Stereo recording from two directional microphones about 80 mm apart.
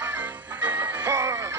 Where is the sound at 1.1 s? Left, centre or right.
Right.